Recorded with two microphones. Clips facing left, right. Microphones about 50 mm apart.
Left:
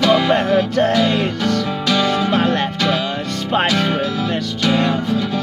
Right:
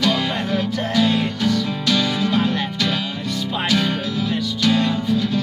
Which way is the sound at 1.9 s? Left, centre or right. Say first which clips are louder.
Left 3 dB; left.